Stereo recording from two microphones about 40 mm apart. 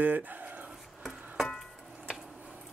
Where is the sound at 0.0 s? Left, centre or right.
Right.